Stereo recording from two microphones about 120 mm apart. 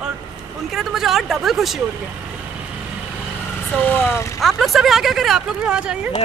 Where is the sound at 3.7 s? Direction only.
15° left (ahead or behind).